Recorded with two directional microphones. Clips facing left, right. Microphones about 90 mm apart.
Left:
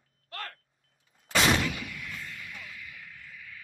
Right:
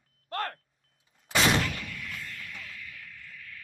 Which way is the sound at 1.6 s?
10° left (ahead or behind).